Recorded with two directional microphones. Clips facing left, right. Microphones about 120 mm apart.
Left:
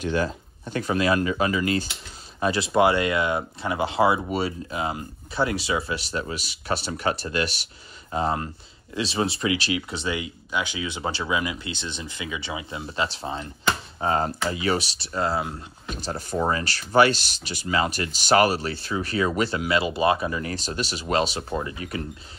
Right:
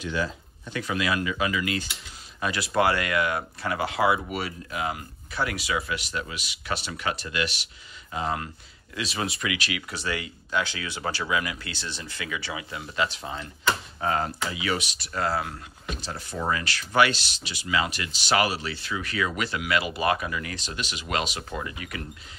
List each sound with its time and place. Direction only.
0.0 s speech: 50° left (ahead or behind); by 15.5 s 25° left (ahead or behind)
16.0 s speech: 40° left (ahead or behind)